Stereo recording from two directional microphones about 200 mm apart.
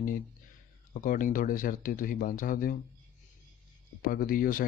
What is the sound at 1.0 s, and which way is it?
Speech, 40° left (ahead or behind).